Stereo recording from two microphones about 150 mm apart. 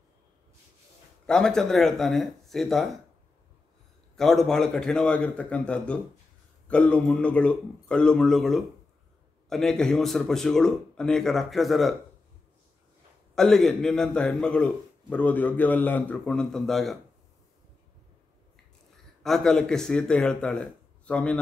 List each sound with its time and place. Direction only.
1.2 s a man's voice: 5° left (ahead or behind)
4.2 s a man's voice: centre (ahead or behind)
13.3 s a man's voice: centre (ahead or behind)
19.2 s a man's voice: centre (ahead or behind)